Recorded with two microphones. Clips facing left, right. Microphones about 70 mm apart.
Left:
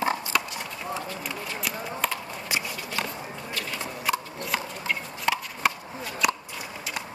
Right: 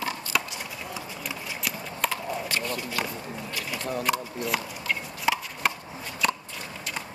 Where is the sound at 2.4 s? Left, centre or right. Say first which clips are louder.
Left 4 dB; centre.